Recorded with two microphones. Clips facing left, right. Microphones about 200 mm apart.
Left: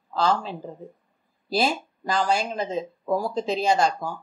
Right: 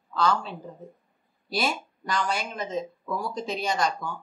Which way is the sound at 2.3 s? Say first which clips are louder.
Left 5 dB; 35° left (ahead or behind).